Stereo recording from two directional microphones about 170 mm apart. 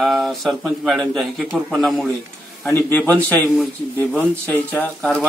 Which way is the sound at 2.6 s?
15° left (ahead or behind).